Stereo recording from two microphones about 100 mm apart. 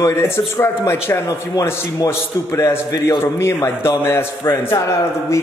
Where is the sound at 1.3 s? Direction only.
35° left (ahead or behind).